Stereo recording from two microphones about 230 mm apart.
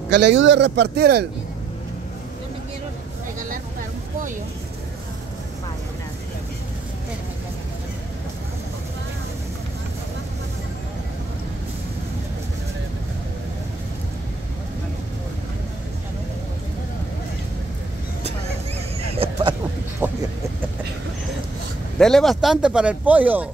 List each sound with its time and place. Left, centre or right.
0.1 s a man's voice: right
19.1 s vehicle: right
20.0 s a sound: centre
21.9 s speech: centre